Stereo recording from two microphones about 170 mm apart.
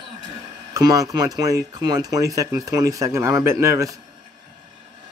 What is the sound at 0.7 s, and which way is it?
Speech, 20° right (ahead or behind).